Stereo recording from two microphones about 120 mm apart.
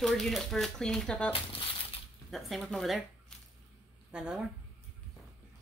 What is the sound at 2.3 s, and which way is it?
Speech, 5° left (ahead or behind).